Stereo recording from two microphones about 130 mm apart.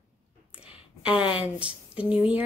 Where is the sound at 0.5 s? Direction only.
10° right (ahead or behind).